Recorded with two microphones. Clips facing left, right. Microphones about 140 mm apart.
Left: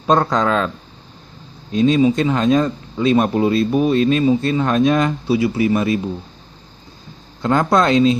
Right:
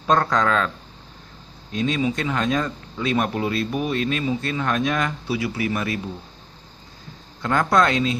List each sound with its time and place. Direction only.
0.0 s speech: 20° left (ahead or behind)
1.7 s speech: 25° left (ahead or behind)
7.4 s speech: 25° left (ahead or behind)